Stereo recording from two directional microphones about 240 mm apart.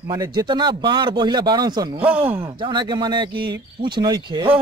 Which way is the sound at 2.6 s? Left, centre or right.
Centre.